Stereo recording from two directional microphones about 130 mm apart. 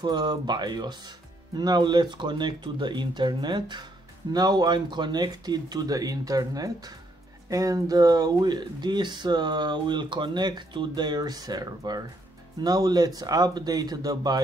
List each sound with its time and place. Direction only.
0.0 s speech: 35° right (ahead or behind)